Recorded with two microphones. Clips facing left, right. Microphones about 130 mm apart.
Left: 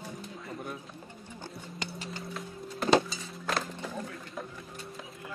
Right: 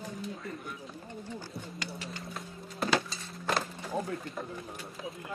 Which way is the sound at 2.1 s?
Centre (ahead or behind).